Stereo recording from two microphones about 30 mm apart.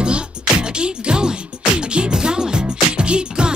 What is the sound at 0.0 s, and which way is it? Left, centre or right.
Music, right.